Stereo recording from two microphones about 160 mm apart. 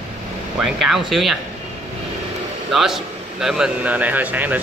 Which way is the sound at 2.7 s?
5° right (ahead or behind).